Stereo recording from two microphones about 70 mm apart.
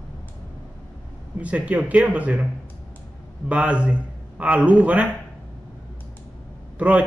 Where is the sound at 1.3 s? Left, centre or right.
Centre.